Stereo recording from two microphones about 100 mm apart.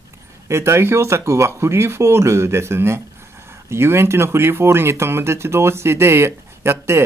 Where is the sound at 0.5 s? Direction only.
25° right (ahead or behind).